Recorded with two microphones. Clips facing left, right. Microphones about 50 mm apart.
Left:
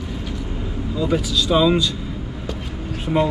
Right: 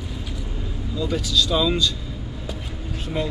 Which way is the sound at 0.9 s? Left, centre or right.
Centre.